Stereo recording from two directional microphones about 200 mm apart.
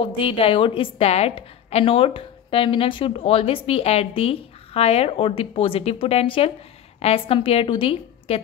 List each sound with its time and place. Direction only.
0.0 s a woman's voice: 30° left (ahead or behind)